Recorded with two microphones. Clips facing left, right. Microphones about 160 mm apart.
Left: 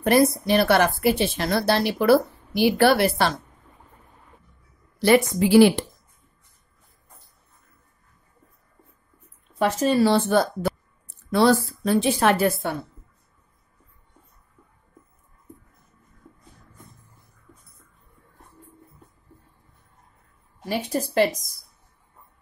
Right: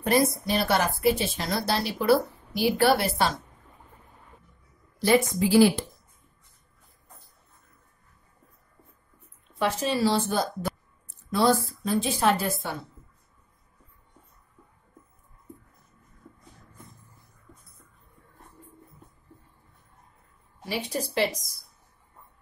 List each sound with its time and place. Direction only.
0.0 s a woman's voice: 70° left (ahead or behind)
4.9 s a woman's voice: 70° left (ahead or behind)
9.6 s a woman's voice: 45° left (ahead or behind); by 12.7 s 65° left (ahead or behind)
20.6 s a woman's voice: 45° left (ahead or behind)